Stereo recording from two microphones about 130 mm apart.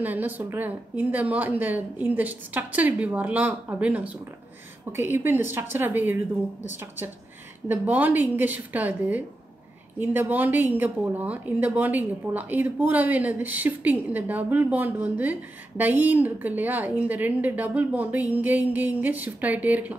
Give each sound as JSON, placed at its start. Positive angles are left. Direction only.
{"t": 0.0, "sound": "speech", "side_deg": -15}
{"t": 7.6, "sound": "speech", "side_deg": -15}